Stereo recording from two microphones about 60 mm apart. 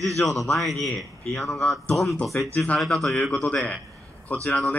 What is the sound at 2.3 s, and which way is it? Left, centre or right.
Speech, left.